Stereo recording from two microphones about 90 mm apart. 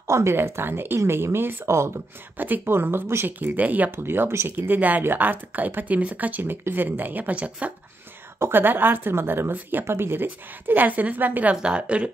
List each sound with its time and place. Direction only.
0.0 s speech: 30° right (ahead or behind); by 12.1 s 10° right (ahead or behind)